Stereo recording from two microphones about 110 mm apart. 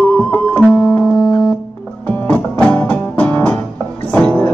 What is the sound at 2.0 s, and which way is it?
Music, 15° left (ahead or behind).